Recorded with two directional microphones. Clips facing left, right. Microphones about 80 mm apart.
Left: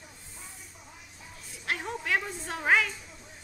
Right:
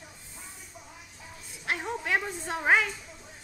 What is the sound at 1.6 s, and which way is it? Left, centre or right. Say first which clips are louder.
A woman's voice: right 1 dB; centre.